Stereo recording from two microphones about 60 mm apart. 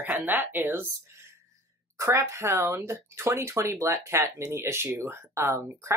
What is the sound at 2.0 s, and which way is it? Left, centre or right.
Speech, right.